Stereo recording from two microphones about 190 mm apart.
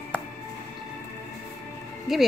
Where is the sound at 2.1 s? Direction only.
Centre (ahead or behind).